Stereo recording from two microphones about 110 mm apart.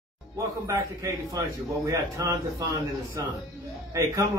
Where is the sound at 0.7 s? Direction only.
30° right (ahead or behind).